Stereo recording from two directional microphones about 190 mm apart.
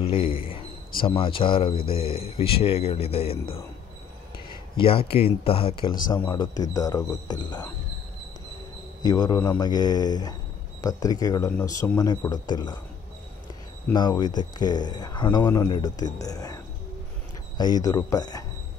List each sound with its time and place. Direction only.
0.0 s a man's voice: 30° left (ahead or behind)
4.7 s speech: 30° left (ahead or behind)
9.0 s speech: 20° left (ahead or behind)
13.9 s speech: 20° left (ahead or behind)
17.6 s speech: 20° left (ahead or behind)